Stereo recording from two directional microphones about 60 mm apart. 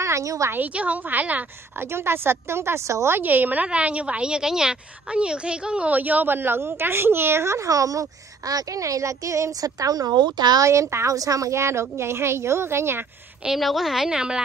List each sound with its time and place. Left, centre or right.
0.0 s a woman's voice: right
0.7 s a woman's voice: right
1.9 s a woman's voice: right
3.2 s a woman's voice: right
10.6 s a woman's voice: right
11.1 s a woman's voice: right
13.6 s a woman's voice: centre